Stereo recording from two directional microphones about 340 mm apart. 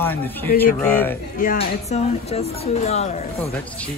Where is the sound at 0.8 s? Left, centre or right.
Centre.